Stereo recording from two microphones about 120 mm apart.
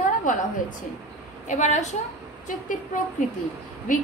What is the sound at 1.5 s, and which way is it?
Speech, 85° left.